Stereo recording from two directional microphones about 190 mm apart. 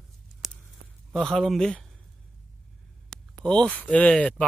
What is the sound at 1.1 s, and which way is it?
Speech, centre (ahead or behind).